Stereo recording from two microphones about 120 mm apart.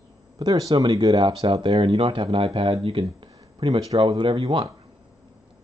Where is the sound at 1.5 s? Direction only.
50° right (ahead or behind).